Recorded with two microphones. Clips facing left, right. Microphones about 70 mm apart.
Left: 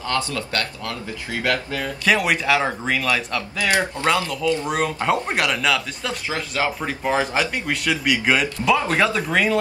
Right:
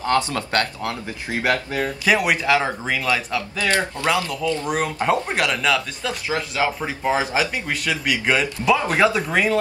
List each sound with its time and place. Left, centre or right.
0.0 s speech: right
2.0 s speech: centre
3.5 s speech: centre
4.6 s speech: centre
6.2 s speech: centre
8.8 s speech: centre